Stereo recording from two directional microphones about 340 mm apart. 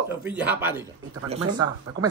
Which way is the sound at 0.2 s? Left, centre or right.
Centre.